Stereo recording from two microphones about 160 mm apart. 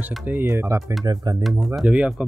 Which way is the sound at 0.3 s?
15° right (ahead or behind).